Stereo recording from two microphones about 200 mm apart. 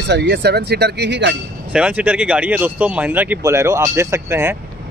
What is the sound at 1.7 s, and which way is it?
Speech, 5° right (ahead or behind).